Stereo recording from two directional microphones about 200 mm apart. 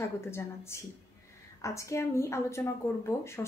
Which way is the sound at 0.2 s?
15° left (ahead or behind).